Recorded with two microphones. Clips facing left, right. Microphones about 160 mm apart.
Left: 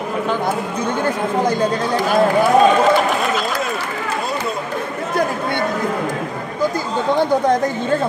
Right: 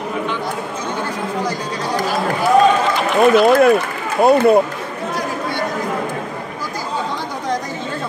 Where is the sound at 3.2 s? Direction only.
55° right (ahead or behind).